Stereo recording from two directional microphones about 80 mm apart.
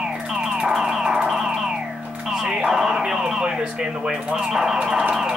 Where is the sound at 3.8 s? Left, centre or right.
Centre.